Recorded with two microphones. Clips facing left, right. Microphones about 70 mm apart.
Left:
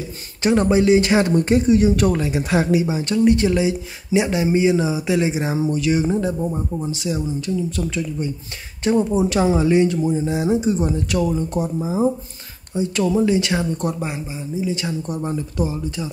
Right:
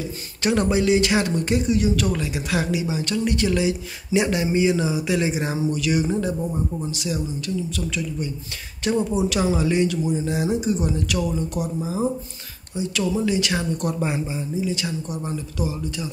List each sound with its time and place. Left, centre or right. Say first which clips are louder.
0.4 s speech: left 4 dB; left
14.0 s speech: right 2 dB; centre
14.6 s speech: left 5 dB; left